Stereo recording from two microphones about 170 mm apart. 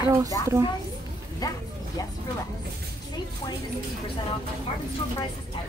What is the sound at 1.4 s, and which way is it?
Speech, 20° left (ahead or behind).